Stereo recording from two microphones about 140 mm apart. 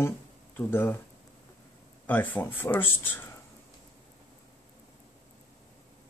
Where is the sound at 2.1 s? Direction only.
15° left (ahead or behind).